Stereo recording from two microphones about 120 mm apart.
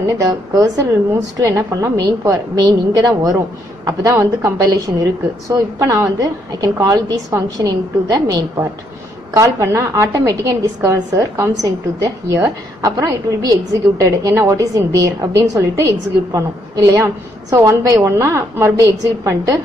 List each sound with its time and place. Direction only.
0.0 s a woman's voice: 30° right (ahead or behind)